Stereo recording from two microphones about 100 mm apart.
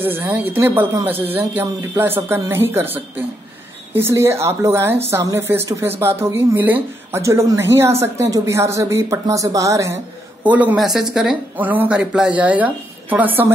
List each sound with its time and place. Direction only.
0.0 s speech: 20° right (ahead or behind)
10.4 s a woman's voice: 15° right (ahead or behind)
10.8 s speech: 5° right (ahead or behind)
11.5 s a woman's voice: 15° right (ahead or behind)